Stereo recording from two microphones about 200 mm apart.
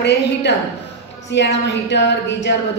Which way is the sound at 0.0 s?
60° left (ahead or behind).